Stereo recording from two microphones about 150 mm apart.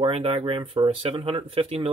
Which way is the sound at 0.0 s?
35° right (ahead or behind).